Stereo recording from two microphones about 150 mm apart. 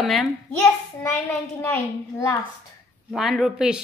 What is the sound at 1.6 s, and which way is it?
Speech, 15° left (ahead or behind).